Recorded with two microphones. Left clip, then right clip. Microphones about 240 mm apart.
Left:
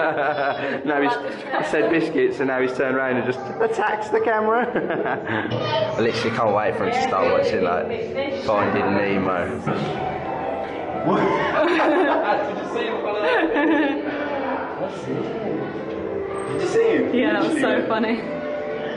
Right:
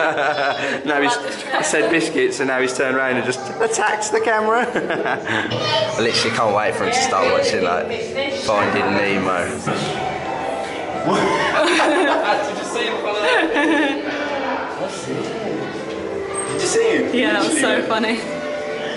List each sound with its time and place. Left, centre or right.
0.8 s a woman's voice: centre
5.9 s a woman's voice: centre
11.2 s chuckle: centre
13.3 s chatter: centre
16.6 s a woman's voice: centre